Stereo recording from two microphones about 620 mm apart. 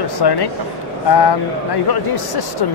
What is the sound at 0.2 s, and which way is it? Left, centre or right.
Speech, left.